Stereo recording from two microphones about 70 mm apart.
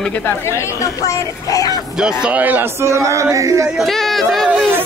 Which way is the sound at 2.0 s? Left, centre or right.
Centre.